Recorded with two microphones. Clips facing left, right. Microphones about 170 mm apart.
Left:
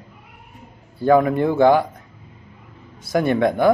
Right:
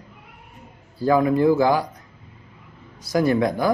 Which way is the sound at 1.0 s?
25° left (ahead or behind).